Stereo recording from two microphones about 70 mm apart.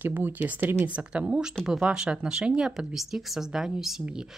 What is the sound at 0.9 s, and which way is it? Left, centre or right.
Speech, centre.